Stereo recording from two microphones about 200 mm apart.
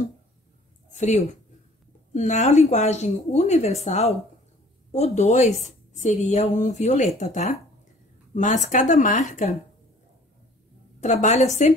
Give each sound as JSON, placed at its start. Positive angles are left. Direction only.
{"t": 0.9, "sound": "a woman's voice", "side_deg": 35}
{"t": 11.0, "sound": "a woman's voice", "side_deg": 35}